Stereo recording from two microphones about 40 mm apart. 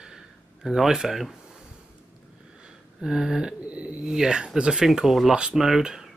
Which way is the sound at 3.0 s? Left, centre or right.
Centre.